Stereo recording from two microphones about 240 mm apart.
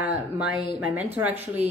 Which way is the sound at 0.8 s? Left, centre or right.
Centre.